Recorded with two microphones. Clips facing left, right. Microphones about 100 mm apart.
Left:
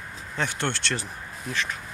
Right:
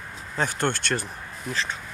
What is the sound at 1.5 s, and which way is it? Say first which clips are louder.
Speech: right 1 dB; 30° right (ahead or behind).